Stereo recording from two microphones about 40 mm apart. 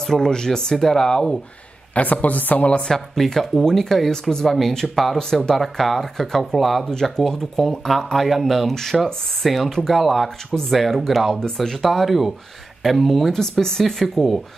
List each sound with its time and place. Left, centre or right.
0.0 s speech: centre
2.0 s speech: left
2.8 s speech: centre
6.9 s speech: centre
8.7 s speech: centre
10.5 s speech: centre
10.8 s speech: centre
13.3 s speech: centre